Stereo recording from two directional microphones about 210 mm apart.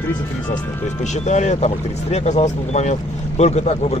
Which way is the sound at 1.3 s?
35° left (ahead or behind).